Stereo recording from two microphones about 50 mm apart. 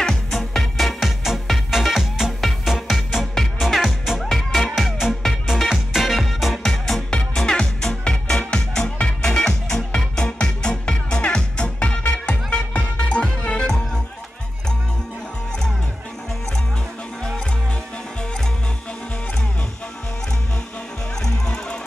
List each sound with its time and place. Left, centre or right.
0.0 s music: centre
7.1 s music: centre
21.2 s music: centre